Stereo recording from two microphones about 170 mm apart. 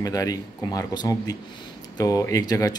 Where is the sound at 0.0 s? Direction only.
20° left (ahead or behind).